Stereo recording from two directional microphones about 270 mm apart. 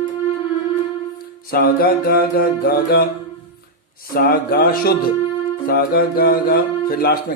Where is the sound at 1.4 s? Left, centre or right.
Left.